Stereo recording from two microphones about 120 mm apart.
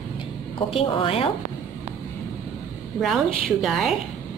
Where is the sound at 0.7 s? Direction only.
50° left (ahead or behind).